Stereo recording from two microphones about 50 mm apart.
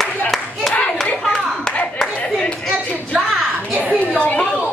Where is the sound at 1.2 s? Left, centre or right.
Centre.